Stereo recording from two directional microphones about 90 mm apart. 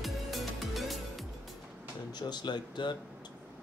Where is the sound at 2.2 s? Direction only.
55° left (ahead or behind).